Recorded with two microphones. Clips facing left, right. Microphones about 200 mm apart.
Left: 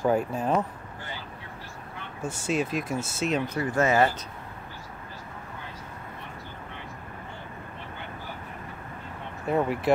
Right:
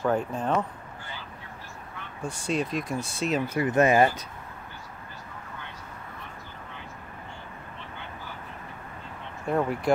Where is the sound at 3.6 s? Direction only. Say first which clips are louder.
Right 3 dB; 20° right (ahead or behind).